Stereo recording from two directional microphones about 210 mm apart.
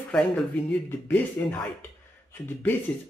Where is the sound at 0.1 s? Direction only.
5° left (ahead or behind).